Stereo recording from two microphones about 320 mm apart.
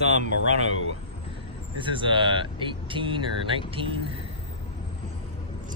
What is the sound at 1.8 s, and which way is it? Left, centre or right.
Speech, centre.